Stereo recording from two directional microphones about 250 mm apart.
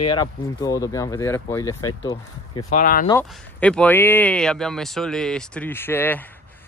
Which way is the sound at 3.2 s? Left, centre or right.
Centre.